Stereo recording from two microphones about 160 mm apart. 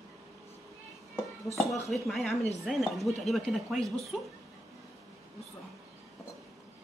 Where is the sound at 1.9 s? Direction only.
Centre (ahead or behind).